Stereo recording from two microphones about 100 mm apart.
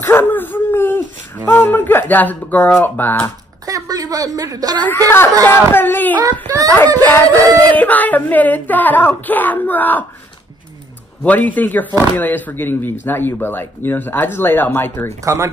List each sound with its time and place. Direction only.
0.0 s a sound: 20° left (ahead or behind)
2.8 s speech: 20° left (ahead or behind)
3.6 s a woman's voice: 35° right (ahead or behind)
4.7 s speech: 20° left (ahead or behind)
6.5 s speech: 35° right (ahead or behind)
7.0 s a sound: 20° left (ahead or behind)
11.2 s a sound: 15° left (ahead or behind)
12.2 s speech: 15° left (ahead or behind)
15.2 s speech: 30° right (ahead or behind)